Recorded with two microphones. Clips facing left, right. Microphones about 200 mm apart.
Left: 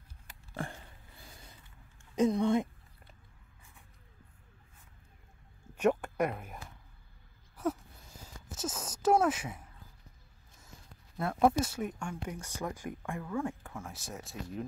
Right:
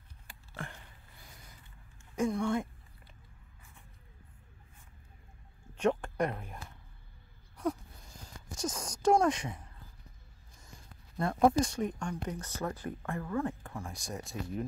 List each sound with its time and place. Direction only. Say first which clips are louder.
2.1 s speech: left 4 dB; 20° left (ahead or behind)
5.8 s a sound: left 1 dB; 10° left (ahead or behind)
11.1 s speech: right 1 dB; 5° left (ahead or behind)